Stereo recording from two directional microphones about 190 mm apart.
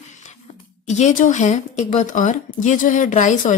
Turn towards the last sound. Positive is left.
turn(degrees=40)  # may be behind; listen again after turning